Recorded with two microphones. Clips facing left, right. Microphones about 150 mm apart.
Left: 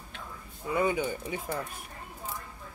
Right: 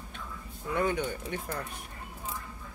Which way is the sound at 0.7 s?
5° left (ahead or behind).